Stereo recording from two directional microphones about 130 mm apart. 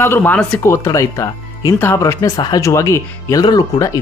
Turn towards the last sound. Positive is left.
turn(degrees=30)  # may be behind; listen again after turning